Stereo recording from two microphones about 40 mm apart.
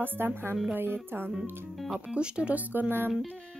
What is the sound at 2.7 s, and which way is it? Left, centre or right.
Speech, right.